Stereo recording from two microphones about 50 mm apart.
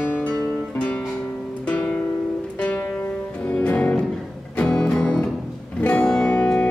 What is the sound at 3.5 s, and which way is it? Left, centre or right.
Music, left.